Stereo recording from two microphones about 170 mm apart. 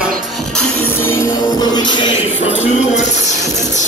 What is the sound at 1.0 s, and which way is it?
Music, 15° left (ahead or behind).